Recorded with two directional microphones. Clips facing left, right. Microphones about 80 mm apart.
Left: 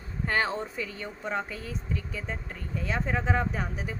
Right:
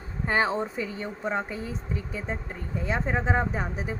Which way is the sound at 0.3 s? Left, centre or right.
Centre.